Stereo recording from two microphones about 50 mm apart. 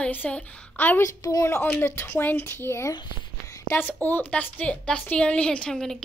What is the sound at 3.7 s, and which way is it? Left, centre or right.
Speech, left.